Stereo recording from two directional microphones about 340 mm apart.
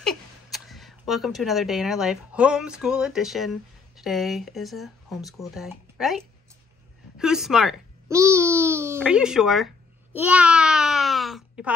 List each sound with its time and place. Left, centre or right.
0.0 s a child's voice: centre
10.1 s babbling: centre